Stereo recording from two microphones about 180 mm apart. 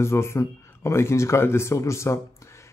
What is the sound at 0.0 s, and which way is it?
Speech, 15° left (ahead or behind).